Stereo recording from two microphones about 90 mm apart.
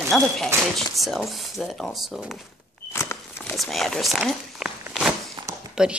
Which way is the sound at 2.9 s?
30° left (ahead or behind).